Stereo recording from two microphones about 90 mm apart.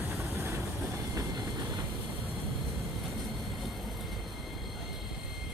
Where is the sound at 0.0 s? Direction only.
30° right (ahead or behind).